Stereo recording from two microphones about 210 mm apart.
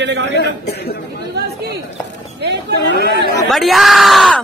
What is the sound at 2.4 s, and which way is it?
Speech, 55° right (ahead or behind).